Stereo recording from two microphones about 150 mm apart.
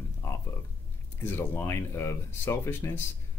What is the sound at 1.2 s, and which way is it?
Speech, 15° left (ahead or behind).